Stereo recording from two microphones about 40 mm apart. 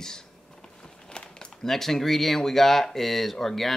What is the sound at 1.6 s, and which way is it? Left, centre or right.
Speech, centre.